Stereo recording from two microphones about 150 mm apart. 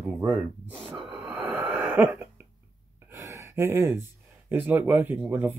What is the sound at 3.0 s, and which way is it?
Gasp, 15° right (ahead or behind).